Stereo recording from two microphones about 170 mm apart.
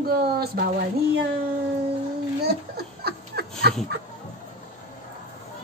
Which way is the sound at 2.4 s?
70° right (ahead or behind).